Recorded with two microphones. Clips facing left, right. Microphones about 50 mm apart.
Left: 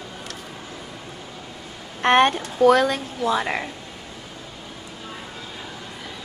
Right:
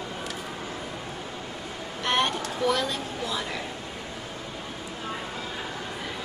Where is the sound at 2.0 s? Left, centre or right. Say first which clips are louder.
Left 9 dB; left.